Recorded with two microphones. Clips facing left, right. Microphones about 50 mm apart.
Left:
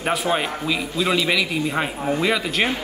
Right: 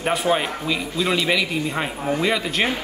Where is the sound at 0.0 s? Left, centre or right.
Centre.